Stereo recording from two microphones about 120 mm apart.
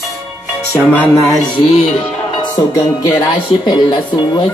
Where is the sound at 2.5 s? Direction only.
35° left (ahead or behind).